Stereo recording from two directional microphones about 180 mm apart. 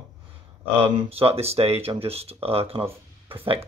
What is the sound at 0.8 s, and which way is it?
Speech, 30° right (ahead or behind).